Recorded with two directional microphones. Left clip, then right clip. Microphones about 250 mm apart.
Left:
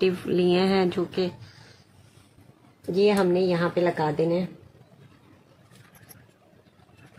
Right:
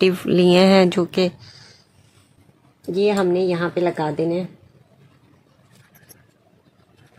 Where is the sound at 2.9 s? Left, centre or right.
Right.